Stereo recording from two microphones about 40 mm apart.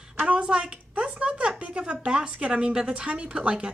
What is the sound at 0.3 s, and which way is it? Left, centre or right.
A woman's voice, right.